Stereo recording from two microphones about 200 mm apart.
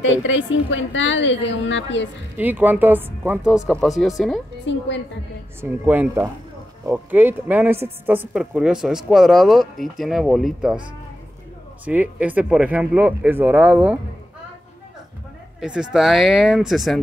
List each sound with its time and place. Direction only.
0.0 s a woman's voice: 70° left (ahead or behind)
2.3 s speech: 10° right (ahead or behind)
4.6 s a woman's voice: 60° left (ahead or behind)
5.6 s speech: 10° right (ahead or behind)
11.8 s speech: 10° right (ahead or behind)
15.6 s speech: 5° right (ahead or behind)